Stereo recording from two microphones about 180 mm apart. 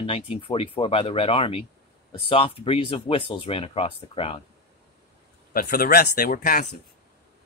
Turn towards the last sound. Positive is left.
turn(degrees=50)  # may be behind; listen again after turning